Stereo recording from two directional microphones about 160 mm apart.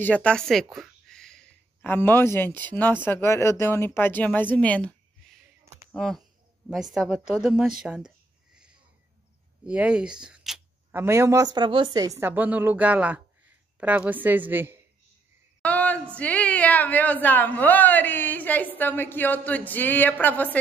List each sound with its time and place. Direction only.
0.0 s a woman's voice: 10° left (ahead or behind)
9.7 s a woman's voice: 5° right (ahead or behind)
10.9 s a woman's voice: 15° right (ahead or behind)
15.6 s a sound: 10° left (ahead or behind)
16.2 s speech: 10° left (ahead or behind)